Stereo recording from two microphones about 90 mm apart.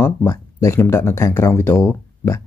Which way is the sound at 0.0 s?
30° left (ahead or behind).